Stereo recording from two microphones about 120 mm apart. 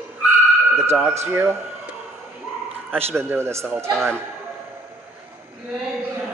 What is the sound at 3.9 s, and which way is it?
Speech, 5° left (ahead or behind).